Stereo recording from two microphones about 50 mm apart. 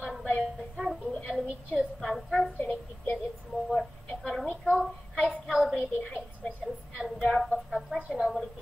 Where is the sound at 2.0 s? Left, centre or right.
Centre.